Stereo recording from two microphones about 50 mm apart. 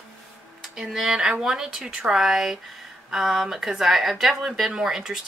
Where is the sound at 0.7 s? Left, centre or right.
Centre.